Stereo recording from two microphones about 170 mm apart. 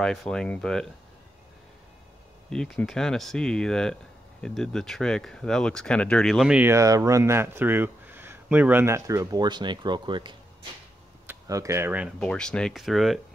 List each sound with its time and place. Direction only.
0.0 s speech: 5° left (ahead or behind)
2.5 s speech: 5° left (ahead or behind)
12.2 s speech: 5° left (ahead or behind)